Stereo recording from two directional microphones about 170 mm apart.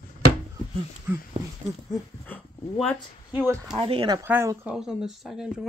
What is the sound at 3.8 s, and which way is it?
Speech, 30° right (ahead or behind).